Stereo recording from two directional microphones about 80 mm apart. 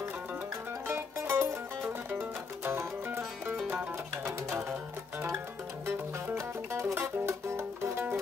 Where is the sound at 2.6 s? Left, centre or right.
Right.